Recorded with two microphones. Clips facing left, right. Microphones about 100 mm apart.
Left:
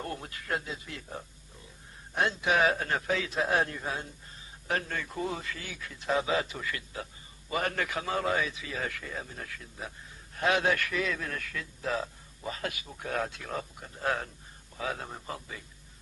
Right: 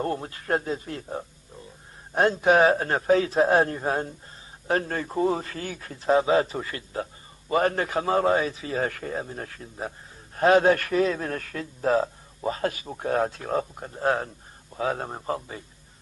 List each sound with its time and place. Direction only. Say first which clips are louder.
0.0 s a man's voice: right 9 dB; 35° right (ahead or behind)